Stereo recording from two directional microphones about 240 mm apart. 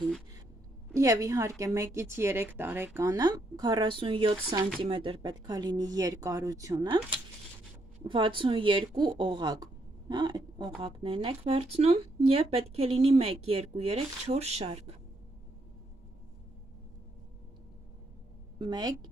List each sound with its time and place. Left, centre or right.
0.9 s a woman's voice: centre
18.6 s a woman's voice: centre